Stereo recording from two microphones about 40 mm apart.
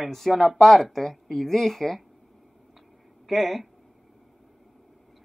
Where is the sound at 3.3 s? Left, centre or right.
Centre.